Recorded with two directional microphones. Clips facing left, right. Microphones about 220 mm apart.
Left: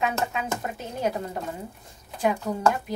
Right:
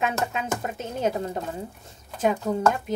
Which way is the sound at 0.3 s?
20° right (ahead or behind).